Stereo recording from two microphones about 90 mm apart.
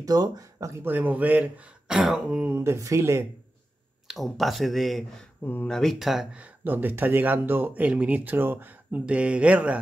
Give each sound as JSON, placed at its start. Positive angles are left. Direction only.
{"t": 0.0, "sound": "speech", "side_deg": -45}
{"t": 0.8, "sound": "speech", "side_deg": -20}
{"t": 1.9, "sound": "speech", "side_deg": -5}
{"t": 2.5, "sound": "speech", "side_deg": -30}
{"t": 4.1, "sound": "speech", "side_deg": 0}
{"t": 5.4, "sound": "speech", "side_deg": 25}
{"t": 5.7, "sound": "speech", "side_deg": 5}
{"t": 6.3, "sound": "speech", "side_deg": -20}